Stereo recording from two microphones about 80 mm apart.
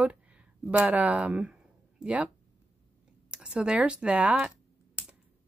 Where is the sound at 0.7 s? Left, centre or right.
Centre.